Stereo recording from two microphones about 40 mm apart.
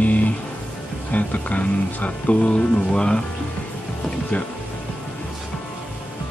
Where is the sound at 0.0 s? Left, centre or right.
Left.